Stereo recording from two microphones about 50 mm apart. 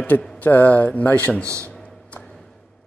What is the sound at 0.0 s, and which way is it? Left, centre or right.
Speech, left.